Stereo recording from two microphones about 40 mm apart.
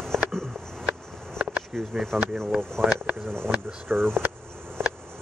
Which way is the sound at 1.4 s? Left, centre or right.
Right.